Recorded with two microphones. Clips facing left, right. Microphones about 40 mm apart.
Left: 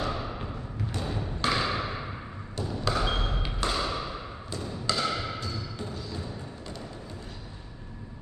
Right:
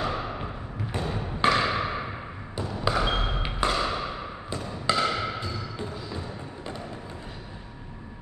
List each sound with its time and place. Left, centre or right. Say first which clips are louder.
0.0 s thump: right 3 dB; right
0.9 s a sound: right 4 dB; right
2.5 s trickle: right 3 dB; centre